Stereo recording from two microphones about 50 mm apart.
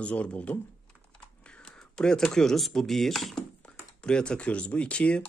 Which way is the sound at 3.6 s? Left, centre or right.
Left.